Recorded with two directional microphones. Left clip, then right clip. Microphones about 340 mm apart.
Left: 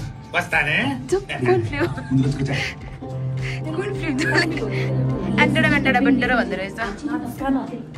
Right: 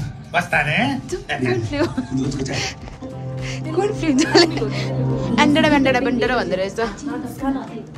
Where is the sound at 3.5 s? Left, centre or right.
Centre.